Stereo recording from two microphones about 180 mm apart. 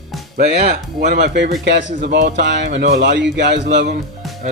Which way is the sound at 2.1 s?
70° right (ahead or behind).